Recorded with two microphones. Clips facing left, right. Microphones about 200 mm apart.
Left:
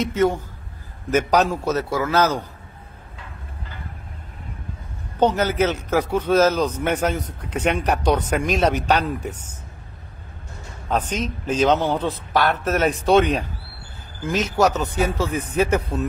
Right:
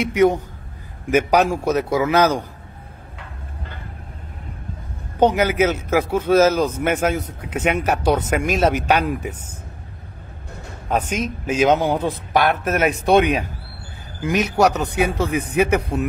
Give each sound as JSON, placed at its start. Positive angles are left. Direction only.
{"t": 0.0, "sound": "speech", "side_deg": -15}
{"t": 5.2, "sound": "speech", "side_deg": -10}
{"t": 10.9, "sound": "speech", "side_deg": -10}